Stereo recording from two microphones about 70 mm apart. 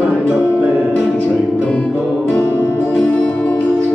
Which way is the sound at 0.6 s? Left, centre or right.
Right.